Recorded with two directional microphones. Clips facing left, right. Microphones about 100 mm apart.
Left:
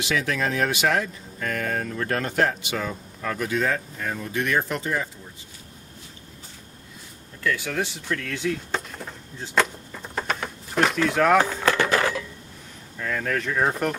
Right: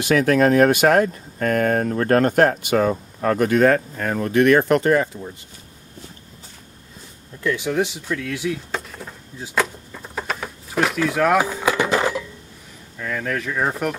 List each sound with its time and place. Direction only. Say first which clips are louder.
0.0 s speech: right 9 dB; 50° right (ahead or behind)
7.4 s a sound: right 5 dB; 20° right (ahead or behind)
12.9 s speech: right 1 dB; centre (ahead or behind)